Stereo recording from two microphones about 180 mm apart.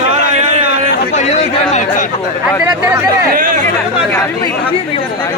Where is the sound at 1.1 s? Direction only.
40° left (ahead or behind).